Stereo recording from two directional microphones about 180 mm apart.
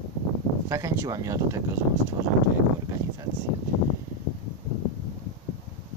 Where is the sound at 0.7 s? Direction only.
20° right (ahead or behind).